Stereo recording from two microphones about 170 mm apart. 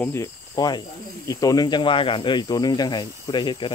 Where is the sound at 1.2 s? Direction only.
20° left (ahead or behind).